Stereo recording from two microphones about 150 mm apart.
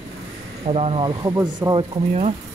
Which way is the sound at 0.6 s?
40° right (ahead or behind).